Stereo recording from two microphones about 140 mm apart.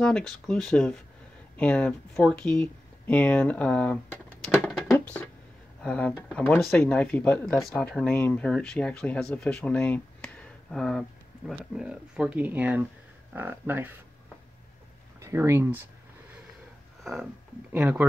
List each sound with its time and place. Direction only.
0.0 s speech: 5° left (ahead or behind)
4.6 s a sound: centre (ahead or behind)
5.8 s speech: 10° left (ahead or behind); by 13.9 s 15° right (ahead or behind)
15.1 s speech: 20° right (ahead or behind)
17.0 s speech: centre (ahead or behind)
17.7 s speech: 10° right (ahead or behind)